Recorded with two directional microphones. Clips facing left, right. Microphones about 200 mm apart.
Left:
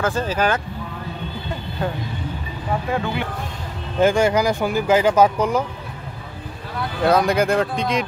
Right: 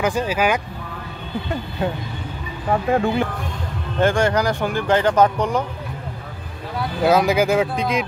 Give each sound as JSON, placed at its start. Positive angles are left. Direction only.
{"t": 0.0, "sound": "speech", "side_deg": -10}
{"t": 2.9, "sound": "speech", "side_deg": -45}
{"t": 4.0, "sound": "speech", "side_deg": 5}
{"t": 7.0, "sound": "speech", "side_deg": -5}